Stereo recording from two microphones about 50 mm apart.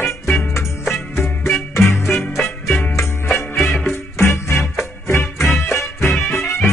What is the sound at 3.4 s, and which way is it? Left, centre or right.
Music, left.